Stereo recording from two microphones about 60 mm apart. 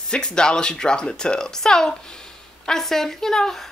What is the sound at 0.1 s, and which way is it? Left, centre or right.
A woman's voice, centre.